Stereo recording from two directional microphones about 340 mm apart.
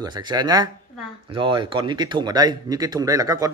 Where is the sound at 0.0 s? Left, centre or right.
Centre.